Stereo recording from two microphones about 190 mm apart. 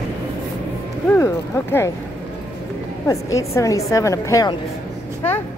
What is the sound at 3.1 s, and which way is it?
A woman's voice, 15° left (ahead or behind).